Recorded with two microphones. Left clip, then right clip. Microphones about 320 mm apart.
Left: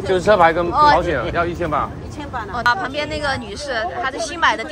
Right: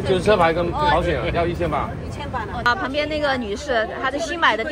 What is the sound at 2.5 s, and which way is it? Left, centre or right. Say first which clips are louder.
Speech: left 3 dB; centre.